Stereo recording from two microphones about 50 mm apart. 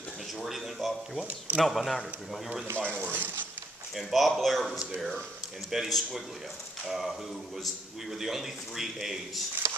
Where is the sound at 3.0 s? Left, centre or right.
Right.